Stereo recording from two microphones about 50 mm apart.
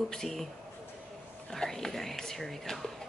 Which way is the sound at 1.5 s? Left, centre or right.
Centre.